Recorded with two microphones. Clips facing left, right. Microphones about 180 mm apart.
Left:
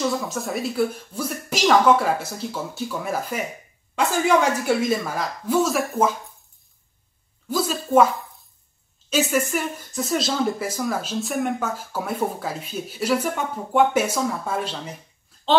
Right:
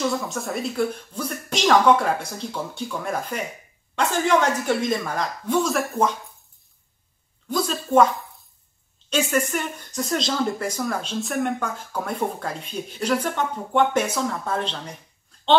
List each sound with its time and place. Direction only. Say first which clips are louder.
0.0 s speech: left 1 dB; centre (ahead or behind)
7.4 s speech: left 1 dB; 5° left (ahead or behind)